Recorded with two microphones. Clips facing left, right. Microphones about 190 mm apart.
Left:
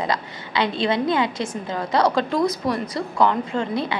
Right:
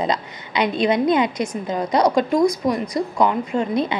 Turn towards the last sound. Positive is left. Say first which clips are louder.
# right 3 dB
turn(degrees=-15)  # may be behind; listen again after turning